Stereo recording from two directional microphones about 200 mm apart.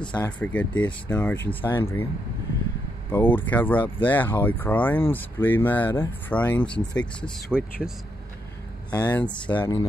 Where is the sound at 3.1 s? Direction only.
10° left (ahead or behind).